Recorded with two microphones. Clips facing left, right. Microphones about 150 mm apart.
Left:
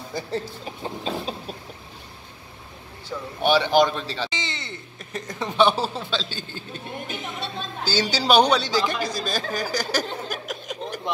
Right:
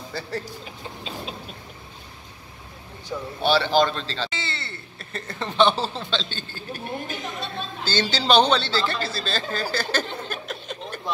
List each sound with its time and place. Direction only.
0.1 s a man's voice: 15° left (ahead or behind)
0.7 s chicken: 40° left (ahead or behind)
3.3 s a man's voice: 15° left (ahead or behind)
6.5 s a sound: 25° left (ahead or behind)
7.8 s a man's voice: 10° left (ahead or behind)
10.2 s a sound: 10° left (ahead or behind)